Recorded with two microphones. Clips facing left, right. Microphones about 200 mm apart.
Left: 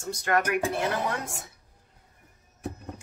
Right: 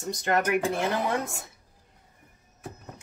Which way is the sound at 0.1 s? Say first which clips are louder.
Even; 20° right (ahead or behind).